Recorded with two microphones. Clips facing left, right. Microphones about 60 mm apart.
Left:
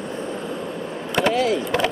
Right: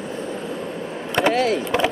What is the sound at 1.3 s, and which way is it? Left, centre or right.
Vehicle, right.